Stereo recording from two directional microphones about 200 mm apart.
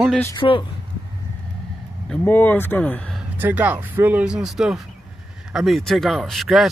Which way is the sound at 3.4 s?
10° right (ahead or behind).